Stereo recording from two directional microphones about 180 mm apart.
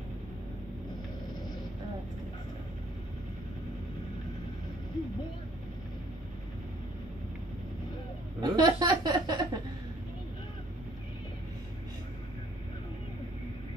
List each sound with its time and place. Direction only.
8.4 s chuckle: 20° right (ahead or behind)